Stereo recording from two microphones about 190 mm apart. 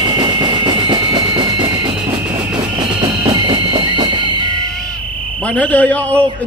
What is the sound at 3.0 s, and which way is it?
Music, 20° right (ahead or behind).